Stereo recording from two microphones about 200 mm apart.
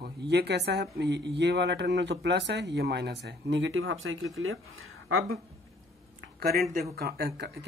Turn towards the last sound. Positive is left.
turn(degrees=-55)  # may be behind; listen again after turning